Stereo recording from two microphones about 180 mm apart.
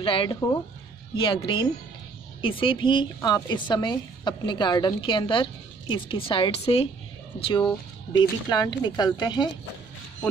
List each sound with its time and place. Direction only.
0.0 s a woman's voice: 30° left (ahead or behind)